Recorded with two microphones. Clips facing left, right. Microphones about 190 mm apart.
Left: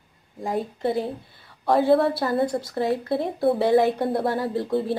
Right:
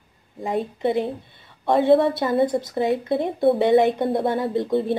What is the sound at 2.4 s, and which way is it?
Speech, 20° right (ahead or behind).